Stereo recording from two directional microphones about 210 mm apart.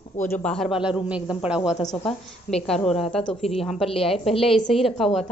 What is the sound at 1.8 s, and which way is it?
Speech, 20° left (ahead or behind).